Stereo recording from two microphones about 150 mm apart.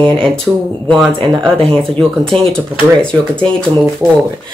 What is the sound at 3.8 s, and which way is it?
Speech, 15° right (ahead or behind).